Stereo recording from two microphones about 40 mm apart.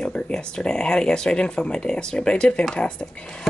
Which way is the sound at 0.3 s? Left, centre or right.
Centre.